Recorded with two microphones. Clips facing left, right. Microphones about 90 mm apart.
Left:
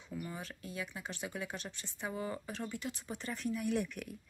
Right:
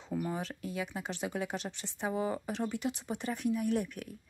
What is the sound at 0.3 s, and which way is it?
A woman's voice, 25° right (ahead or behind).